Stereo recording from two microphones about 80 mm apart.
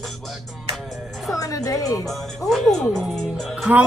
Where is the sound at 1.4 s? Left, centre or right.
Left.